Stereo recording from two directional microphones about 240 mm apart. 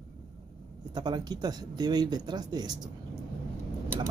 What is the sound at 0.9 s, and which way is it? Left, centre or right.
Speech, centre.